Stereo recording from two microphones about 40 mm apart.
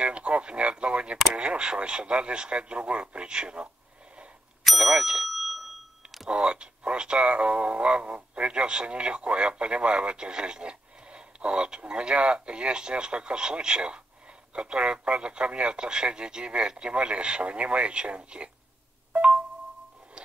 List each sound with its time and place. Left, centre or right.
0.0 s speech: right
4.6 s bicycle bell: centre
6.3 s speech: right
19.1 s chime: right